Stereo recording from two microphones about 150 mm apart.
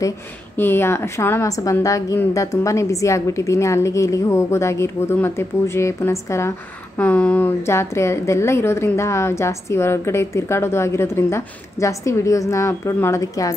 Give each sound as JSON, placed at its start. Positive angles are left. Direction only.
{"t": 0.6, "sound": "a woman's voice", "side_deg": 15}